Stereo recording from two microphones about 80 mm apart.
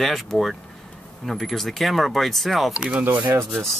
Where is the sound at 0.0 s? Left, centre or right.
Centre.